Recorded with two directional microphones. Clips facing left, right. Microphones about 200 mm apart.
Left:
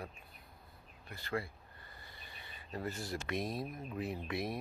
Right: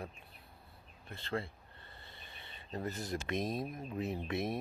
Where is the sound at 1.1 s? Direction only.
25° right (ahead or behind).